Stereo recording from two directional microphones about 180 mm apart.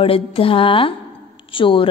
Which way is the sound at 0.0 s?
30° left (ahead or behind).